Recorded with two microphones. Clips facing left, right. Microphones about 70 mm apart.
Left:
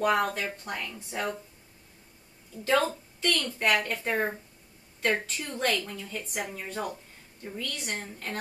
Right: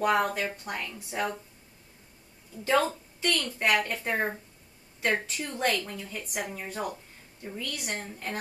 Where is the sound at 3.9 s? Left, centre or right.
Centre.